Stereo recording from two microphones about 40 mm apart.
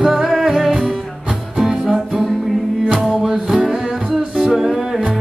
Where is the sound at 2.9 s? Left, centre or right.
Centre.